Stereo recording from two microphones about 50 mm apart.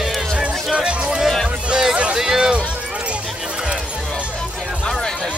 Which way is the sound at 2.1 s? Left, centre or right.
Centre.